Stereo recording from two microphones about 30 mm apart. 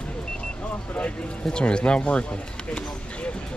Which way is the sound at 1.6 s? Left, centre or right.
Left.